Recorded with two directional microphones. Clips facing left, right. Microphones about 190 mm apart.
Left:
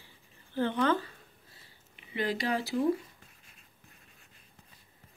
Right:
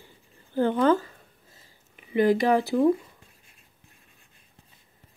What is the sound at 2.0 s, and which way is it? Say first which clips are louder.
Speech: right 11 dB; 50° right (ahead or behind).